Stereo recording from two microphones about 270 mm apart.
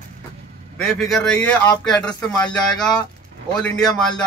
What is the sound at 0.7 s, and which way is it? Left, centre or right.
Speech, centre.